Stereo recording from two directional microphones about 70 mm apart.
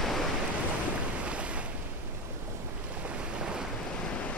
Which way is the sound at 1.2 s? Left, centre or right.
Centre.